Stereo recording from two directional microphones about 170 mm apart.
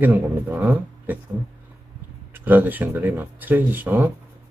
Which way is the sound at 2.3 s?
10° right (ahead or behind).